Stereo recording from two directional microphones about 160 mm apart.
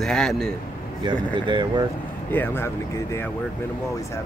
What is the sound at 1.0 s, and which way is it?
Speech, 30° right (ahead or behind).